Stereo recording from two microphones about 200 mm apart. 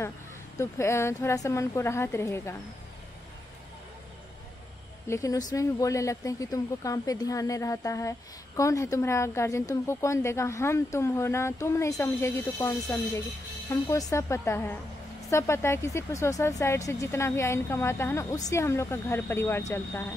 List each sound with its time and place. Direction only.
0.6 s speech: 15° left (ahead or behind)
5.0 s speech: 15° left (ahead or behind)